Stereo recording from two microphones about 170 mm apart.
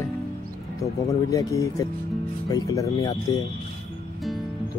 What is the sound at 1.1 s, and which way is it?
Speech, 20° left (ahead or behind).